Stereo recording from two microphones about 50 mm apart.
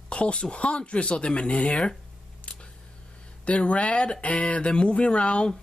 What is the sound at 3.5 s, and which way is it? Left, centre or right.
Speech, left.